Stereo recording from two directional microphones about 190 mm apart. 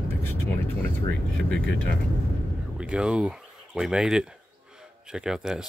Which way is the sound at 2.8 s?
5° right (ahead or behind).